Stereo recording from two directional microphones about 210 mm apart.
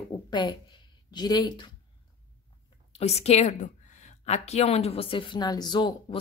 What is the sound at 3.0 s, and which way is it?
Speech, 30° left (ahead or behind).